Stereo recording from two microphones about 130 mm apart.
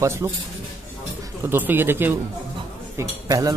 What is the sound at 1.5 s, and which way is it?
Speech, 15° right (ahead or behind).